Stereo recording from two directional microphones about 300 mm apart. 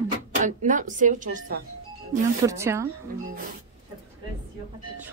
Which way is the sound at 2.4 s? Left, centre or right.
Centre.